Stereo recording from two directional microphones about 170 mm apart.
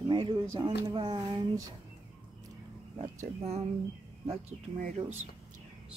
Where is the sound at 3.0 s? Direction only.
40° right (ahead or behind).